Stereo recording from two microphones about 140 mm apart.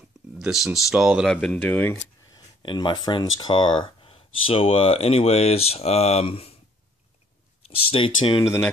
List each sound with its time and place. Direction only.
0.3 s speech: 5° right (ahead or behind)
2.3 s speech: 35° left (ahead or behind)
7.6 s speech: 40° left (ahead or behind)